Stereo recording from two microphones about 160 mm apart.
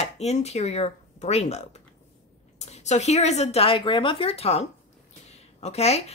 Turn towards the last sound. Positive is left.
turn(degrees=40)  # may be behind; listen again after turning